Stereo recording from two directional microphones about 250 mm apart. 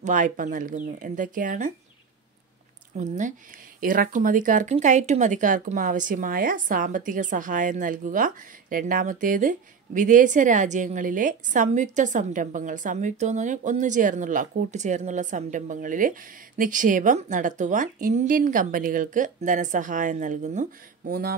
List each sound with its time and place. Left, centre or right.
0.0 s speech: right
3.0 s speech: right